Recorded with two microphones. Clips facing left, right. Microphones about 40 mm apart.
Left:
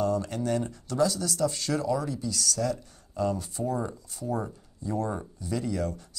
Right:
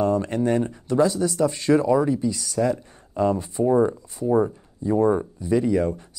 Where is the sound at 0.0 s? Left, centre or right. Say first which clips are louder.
Right 6 dB; right.